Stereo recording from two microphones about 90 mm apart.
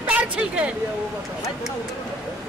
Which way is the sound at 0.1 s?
15° right (ahead or behind).